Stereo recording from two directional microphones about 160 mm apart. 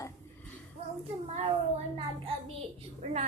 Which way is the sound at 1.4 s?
30° right (ahead or behind).